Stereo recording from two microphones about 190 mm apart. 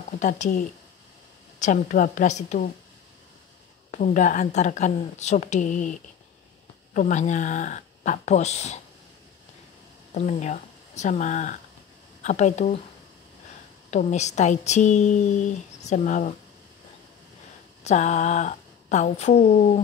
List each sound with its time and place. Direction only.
0.2 s a woman's voice: 40° left (ahead or behind)
3.9 s speech: 40° left (ahead or behind)
10.1 s speech: 40° left (ahead or behind)
13.8 s speech: 35° left (ahead or behind)
17.8 s speech: 35° left (ahead or behind)